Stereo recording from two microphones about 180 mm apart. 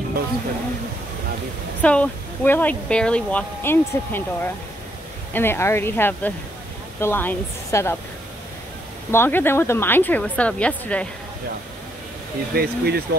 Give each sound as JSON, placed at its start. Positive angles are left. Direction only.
{"t": 1.8, "sound": "speech", "side_deg": 5}
{"t": 9.1, "sound": "speech", "side_deg": 10}
{"t": 12.5, "sound": "speech", "side_deg": -60}